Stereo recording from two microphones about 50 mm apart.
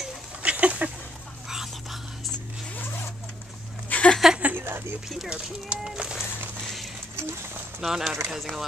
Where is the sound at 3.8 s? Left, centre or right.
Left.